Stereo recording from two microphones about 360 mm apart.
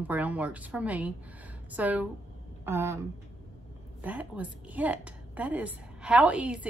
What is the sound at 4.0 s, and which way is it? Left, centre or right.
A woman's voice, centre.